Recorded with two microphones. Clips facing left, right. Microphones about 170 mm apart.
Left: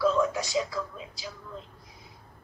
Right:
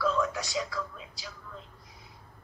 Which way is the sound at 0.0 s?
20° left (ahead or behind).